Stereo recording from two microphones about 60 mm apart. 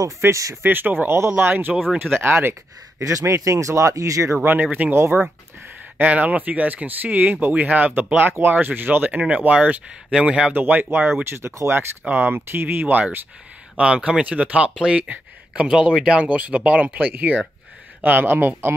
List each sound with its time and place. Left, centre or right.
0.2 s speech: right
0.6 s speech: right
1.1 s speech: right
3.0 s speech: right
4.4 s speech: right
5.9 s speech: right
10.5 s speech: right
12.1 s speech: right
13.7 s speech: centre
15.7 s speech: centre; by 18.5 s right